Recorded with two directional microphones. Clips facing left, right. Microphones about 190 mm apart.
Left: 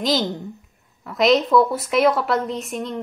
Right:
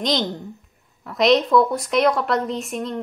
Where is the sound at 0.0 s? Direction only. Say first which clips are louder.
Left 1 dB; 5° left (ahead or behind).